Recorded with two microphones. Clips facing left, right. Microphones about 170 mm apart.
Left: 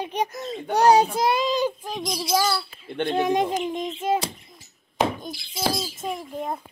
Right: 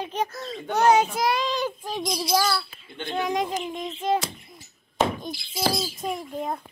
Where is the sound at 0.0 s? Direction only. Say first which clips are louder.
Left 2 dB; 15° left (ahead or behind).